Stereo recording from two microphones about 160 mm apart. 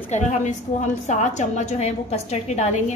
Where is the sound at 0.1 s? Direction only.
50° left (ahead or behind).